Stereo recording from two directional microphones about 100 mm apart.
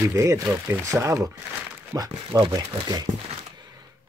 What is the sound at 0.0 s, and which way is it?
Speech, 30° right (ahead or behind).